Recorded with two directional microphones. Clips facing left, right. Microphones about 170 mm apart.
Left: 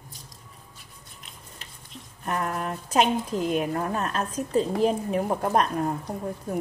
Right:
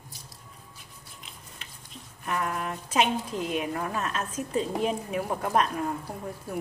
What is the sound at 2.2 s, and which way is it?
A woman's voice, 40° left (ahead or behind).